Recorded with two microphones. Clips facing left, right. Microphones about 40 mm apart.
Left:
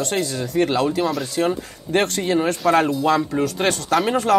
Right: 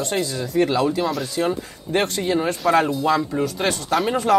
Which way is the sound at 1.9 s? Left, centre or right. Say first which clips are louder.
Left 1 dB; left.